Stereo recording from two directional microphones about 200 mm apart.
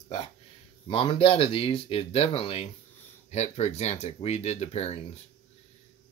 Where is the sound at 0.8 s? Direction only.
25° left (ahead or behind).